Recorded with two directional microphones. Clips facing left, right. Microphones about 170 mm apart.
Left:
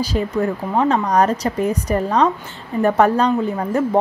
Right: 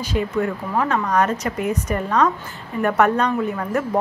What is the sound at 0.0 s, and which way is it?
A woman's voice, 35° left (ahead or behind).